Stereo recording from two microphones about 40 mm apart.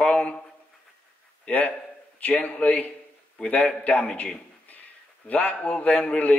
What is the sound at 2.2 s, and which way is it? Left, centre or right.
A man's voice, left.